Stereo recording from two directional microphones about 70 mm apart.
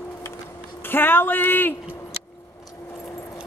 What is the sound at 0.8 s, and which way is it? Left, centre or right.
Speech, left.